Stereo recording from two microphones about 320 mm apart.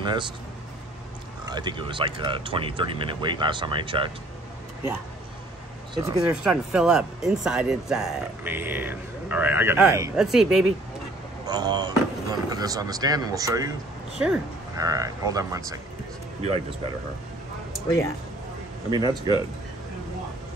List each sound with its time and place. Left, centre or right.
0.0 s speech: centre
1.4 s speech: centre
6.0 s speech: centre
11.4 s speech: centre
18.9 s speech: centre